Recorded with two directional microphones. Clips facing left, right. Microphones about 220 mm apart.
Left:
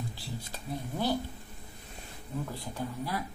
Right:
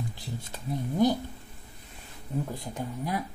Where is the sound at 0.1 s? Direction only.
20° right (ahead or behind).